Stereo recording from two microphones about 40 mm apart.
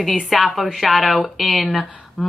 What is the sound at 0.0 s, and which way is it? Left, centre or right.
A woman's voice, centre.